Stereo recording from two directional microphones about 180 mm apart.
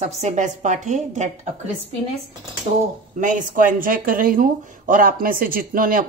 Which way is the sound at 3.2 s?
45° right (ahead or behind).